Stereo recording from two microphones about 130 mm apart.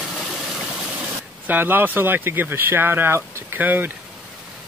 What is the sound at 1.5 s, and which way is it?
Speech, 15° right (ahead or behind).